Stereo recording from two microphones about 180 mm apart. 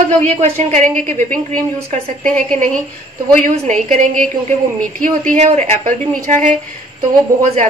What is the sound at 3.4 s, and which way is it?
A man's voice, 40° right (ahead or behind).